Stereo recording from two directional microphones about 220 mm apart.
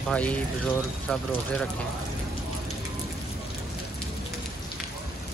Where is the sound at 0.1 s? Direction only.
5° left (ahead or behind).